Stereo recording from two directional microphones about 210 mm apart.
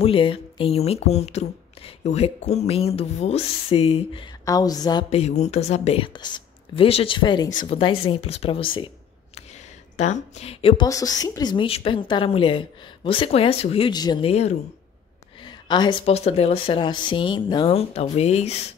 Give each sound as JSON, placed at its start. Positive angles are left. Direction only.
{"t": 0.0, "sound": "speech", "side_deg": 25}
{"t": 5.1, "sound": "speech", "side_deg": 30}
{"t": 8.7, "sound": "a sound", "side_deg": 25}
{"t": 10.9, "sound": "speech", "side_deg": 15}